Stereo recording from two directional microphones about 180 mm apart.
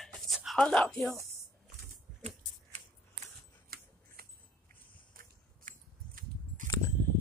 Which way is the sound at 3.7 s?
55° right (ahead or behind).